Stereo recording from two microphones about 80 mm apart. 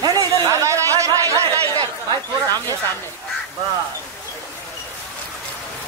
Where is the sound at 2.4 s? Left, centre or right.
Left.